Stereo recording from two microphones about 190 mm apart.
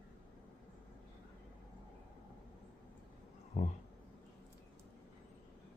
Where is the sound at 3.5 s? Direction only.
40° left (ahead or behind).